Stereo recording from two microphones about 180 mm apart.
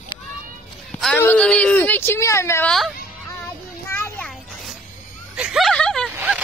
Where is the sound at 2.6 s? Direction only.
Centre (ahead or behind).